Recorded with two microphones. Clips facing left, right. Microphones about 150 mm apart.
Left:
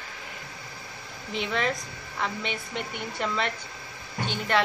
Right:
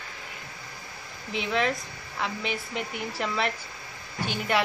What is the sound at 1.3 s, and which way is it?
A woman's voice, centre (ahead or behind).